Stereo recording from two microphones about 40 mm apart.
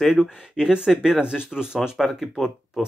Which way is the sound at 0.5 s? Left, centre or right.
Centre.